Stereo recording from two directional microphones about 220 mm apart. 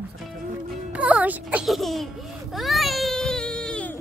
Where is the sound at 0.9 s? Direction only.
5° right (ahead or behind).